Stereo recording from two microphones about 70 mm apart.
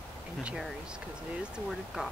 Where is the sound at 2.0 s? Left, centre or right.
Centre.